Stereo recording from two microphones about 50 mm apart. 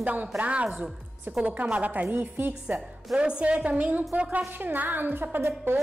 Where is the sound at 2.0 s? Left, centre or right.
Right.